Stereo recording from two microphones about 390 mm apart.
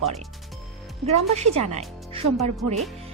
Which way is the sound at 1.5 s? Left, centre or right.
Centre.